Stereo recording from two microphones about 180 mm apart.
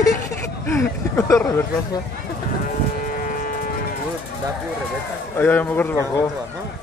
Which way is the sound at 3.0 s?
50° left (ahead or behind).